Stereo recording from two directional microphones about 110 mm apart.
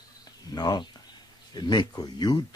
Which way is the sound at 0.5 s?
40° left (ahead or behind).